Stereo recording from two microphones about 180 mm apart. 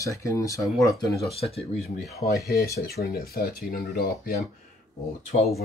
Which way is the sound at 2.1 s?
60° left (ahead or behind).